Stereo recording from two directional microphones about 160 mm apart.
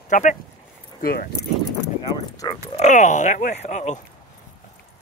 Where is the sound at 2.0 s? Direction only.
25° left (ahead or behind).